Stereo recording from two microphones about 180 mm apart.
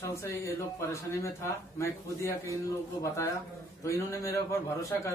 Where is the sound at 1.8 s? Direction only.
15° left (ahead or behind).